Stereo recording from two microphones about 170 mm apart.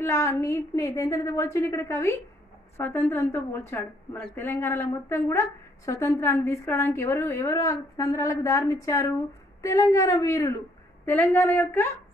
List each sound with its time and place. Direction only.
0.0 s a woman's voice: 15° left (ahead or behind)